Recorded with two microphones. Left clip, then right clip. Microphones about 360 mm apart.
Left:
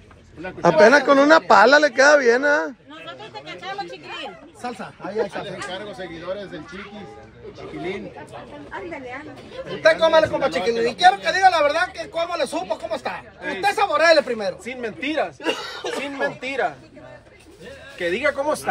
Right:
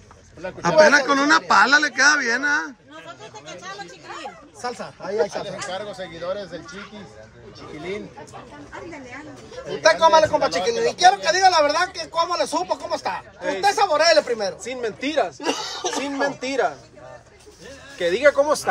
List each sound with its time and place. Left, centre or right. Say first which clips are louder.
0.6 s speech: left 1 dB; centre
4.6 s speech: right 2 dB; centre
5.2 s speech: right 2 dB; right
9.8 s speech: right 1 dB; centre
14.7 s speech: right 1 dB; right
17.9 s speech: right 5 dB; right